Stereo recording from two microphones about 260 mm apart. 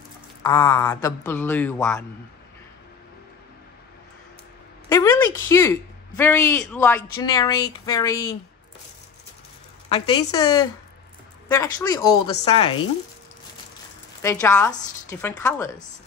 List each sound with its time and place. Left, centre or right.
0.4 s a man's voice: centre
4.8 s a woman's voice: centre
9.8 s a man's voice: centre
14.2 s a man's voice: centre